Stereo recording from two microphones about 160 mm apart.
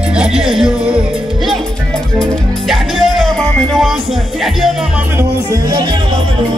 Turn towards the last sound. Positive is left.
turn(degrees=-20)  # may be behind; listen again after turning